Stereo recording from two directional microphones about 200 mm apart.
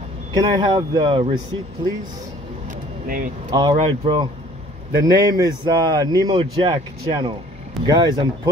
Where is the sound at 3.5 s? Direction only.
20° right (ahead or behind).